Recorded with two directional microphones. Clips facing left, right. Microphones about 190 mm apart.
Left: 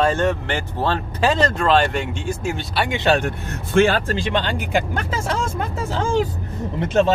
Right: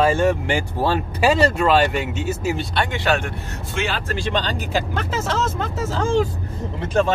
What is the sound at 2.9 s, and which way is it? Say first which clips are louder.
Speech: left 4 dB; 25° left (ahead or behind).